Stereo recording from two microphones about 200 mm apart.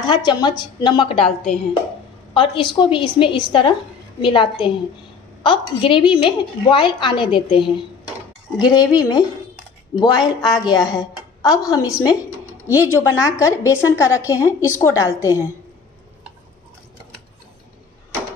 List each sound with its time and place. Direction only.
0.0 s a woman's voice: 20° left (ahead or behind)
2.3 s a woman's voice: 25° left (ahead or behind)
10.4 s a woman's voice: centre (ahead or behind)
10.7 s a woman's voice: 20° left (ahead or behind)